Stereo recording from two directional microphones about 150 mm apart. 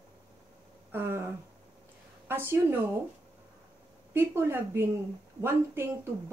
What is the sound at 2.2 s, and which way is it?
Speech, 15° right (ahead or behind).